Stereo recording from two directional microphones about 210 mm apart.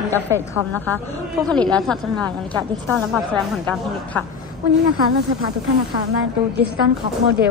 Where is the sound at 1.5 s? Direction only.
5° left (ahead or behind).